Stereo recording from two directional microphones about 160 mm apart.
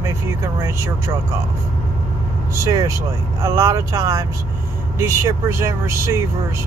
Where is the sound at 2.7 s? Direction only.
20° right (ahead or behind).